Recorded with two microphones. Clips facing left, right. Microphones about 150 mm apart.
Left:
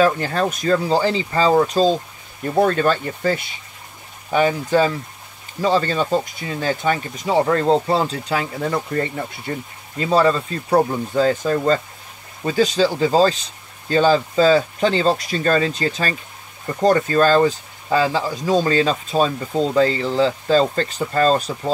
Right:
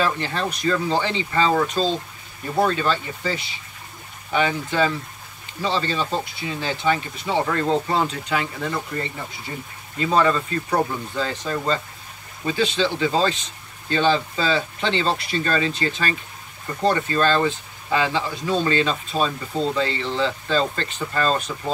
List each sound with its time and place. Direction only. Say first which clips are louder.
0.0 s speech: left 6 dB; 45° left (ahead or behind)
2.6 s speech: left 4 dB; 50° left (ahead or behind)
9.5 s speech: left 6 dB; 55° left (ahead or behind)
9.9 s speech: left 3 dB; 35° left (ahead or behind)